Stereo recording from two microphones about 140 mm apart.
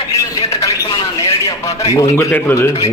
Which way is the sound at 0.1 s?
25° left (ahead or behind).